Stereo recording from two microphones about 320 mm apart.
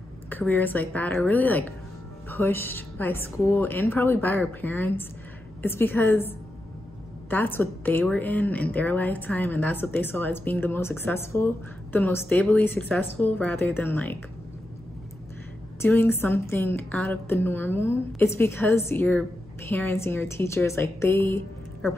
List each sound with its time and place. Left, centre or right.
0.3 s a woman's voice: centre
15.8 s a woman's voice: centre